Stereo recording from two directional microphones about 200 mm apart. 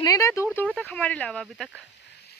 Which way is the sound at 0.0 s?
15° left (ahead or behind).